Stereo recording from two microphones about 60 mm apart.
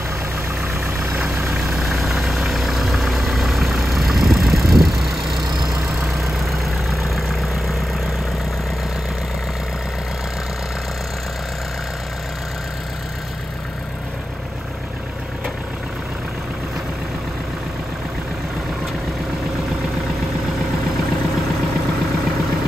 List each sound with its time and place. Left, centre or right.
0.8 s vehicle: right
1.7 s vehicle: centre